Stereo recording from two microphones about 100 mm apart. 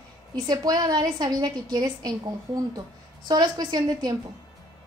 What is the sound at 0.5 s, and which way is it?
A woman's voice, 40° right (ahead or behind).